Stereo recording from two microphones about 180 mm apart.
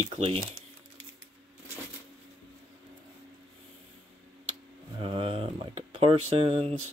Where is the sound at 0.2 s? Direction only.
30° right (ahead or behind).